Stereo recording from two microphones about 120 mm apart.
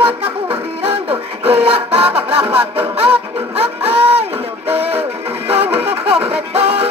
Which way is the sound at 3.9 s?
55° right (ahead or behind).